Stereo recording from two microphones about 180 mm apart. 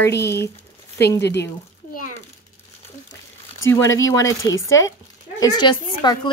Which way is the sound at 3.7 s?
15° left (ahead or behind).